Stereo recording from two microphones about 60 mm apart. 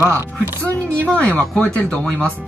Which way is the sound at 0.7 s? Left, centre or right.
Left.